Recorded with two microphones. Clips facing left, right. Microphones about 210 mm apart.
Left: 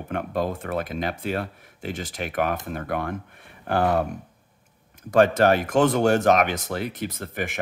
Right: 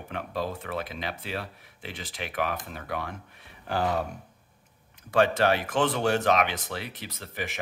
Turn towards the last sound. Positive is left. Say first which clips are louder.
# left 6 dB
turn(degrees=50)  # may be behind; listen again after turning